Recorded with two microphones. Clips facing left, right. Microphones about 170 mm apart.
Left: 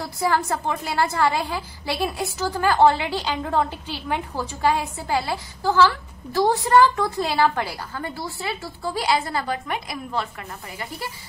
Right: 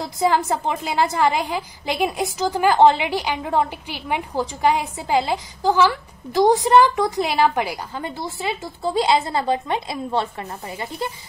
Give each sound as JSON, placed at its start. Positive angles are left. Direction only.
{"t": 0.0, "sound": "a woman's voice", "side_deg": -20}